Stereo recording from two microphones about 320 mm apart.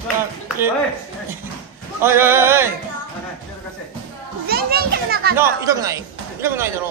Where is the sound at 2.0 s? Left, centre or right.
Centre.